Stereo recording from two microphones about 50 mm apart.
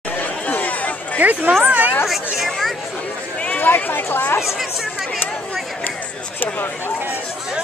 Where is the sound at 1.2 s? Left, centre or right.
Right.